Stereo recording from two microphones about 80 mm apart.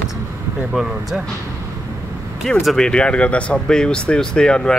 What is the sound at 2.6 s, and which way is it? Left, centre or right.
Speech, centre.